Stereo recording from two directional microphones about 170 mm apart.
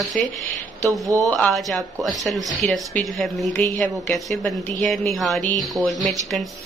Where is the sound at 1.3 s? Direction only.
5° left (ahead or behind).